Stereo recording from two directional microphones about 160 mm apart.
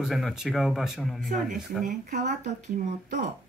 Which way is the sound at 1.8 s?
55° right (ahead or behind).